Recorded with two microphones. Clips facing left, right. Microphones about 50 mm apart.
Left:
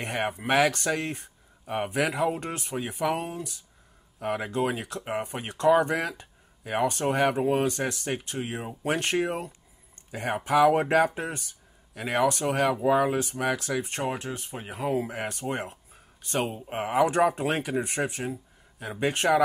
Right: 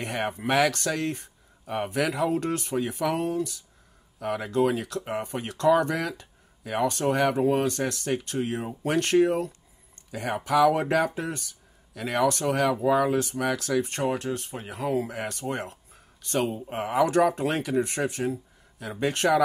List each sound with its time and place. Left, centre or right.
0.0 s speech: centre